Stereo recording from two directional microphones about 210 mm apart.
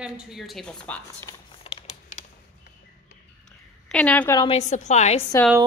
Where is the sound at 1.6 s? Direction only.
25° left (ahead or behind).